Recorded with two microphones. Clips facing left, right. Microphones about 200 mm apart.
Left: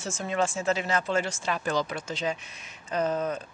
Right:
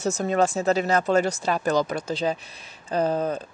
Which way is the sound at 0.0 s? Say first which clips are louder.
Right 6 dB; 40° right (ahead or behind).